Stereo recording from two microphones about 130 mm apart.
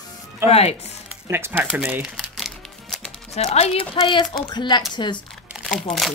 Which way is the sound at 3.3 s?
55° left (ahead or behind).